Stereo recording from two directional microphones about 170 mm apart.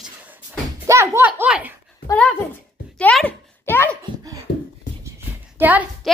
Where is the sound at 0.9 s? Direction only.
15° right (ahead or behind).